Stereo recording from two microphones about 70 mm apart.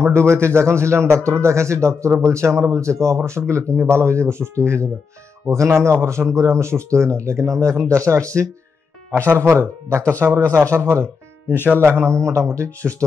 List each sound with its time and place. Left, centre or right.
0.0 s a man's voice: right
9.1 s a man's voice: right